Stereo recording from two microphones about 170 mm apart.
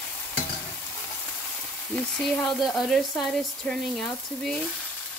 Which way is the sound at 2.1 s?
Centre (ahead or behind).